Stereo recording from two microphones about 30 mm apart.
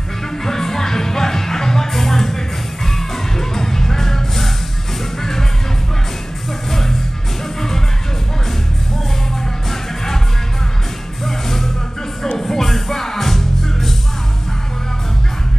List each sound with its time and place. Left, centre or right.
0.5 s music: centre
6.7 s music: centre
9.7 s music: centre
12.4 s music: centre